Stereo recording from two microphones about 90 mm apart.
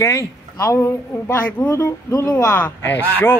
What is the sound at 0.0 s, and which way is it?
A man's voice, 35° left (ahead or behind).